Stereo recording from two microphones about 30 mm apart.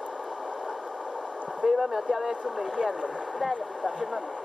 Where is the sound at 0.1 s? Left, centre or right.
Centre.